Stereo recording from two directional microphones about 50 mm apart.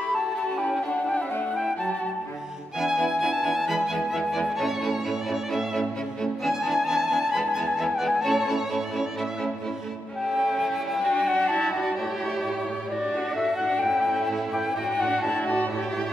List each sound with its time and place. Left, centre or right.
3.1 s music: centre
6.4 s music: centre
10.3 s flute: centre
13.4 s flute: centre
13.8 s music: centre
15.3 s music: left